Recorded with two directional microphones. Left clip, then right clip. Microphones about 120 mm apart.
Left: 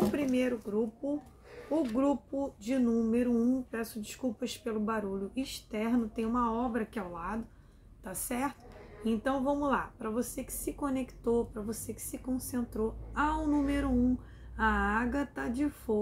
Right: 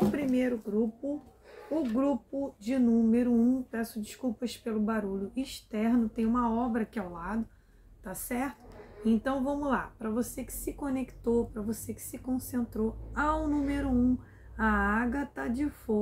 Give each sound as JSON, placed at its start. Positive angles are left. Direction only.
{"t": 0.1, "sound": "a sound", "side_deg": 15}
{"t": 1.8, "sound": "speech", "side_deg": 15}
{"t": 8.0, "sound": "a woman's voice", "side_deg": 20}
{"t": 9.0, "sound": "a woman's voice", "side_deg": 10}